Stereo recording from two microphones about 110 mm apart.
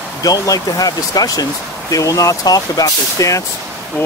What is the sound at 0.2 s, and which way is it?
Speech, 35° left (ahead or behind).